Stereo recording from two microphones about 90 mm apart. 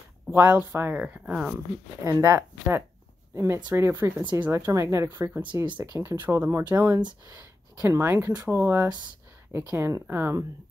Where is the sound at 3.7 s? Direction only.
30° right (ahead or behind).